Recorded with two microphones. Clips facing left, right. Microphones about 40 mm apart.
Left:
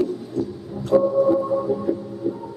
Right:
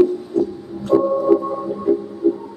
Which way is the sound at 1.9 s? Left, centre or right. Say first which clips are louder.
Right 7 dB; centre.